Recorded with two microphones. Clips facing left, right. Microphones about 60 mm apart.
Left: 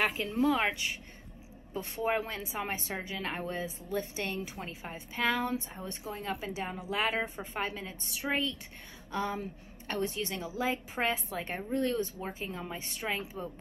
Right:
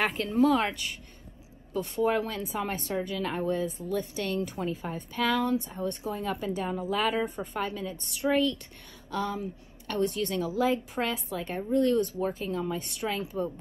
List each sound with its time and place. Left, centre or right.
0.0 s a woman's voice: centre
1.7 s a woman's voice: left
4.6 s a woman's voice: centre
6.0 s a woman's voice: centre; by 10.2 s left
10.2 s a woman's voice: centre
11.1 s a woman's voice: left